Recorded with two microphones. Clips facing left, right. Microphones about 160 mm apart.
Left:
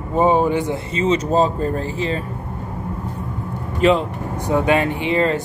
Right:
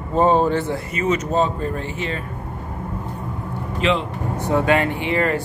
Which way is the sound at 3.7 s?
45° left (ahead or behind).